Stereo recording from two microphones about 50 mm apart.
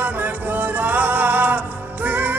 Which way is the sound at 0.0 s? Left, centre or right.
Right.